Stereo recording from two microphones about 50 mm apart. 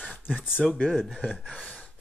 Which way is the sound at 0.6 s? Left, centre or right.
Centre.